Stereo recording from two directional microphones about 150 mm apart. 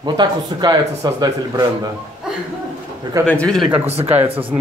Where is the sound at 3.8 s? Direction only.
40° right (ahead or behind).